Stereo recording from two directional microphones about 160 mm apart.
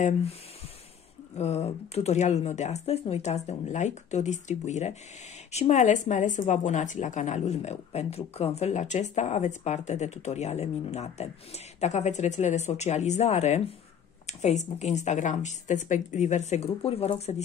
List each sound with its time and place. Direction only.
0.0 s speech: 40° left (ahead or behind)
1.4 s speech: 40° left (ahead or behind)